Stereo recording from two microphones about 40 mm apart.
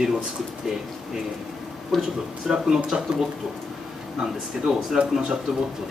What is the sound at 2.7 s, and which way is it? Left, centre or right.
Speech, centre.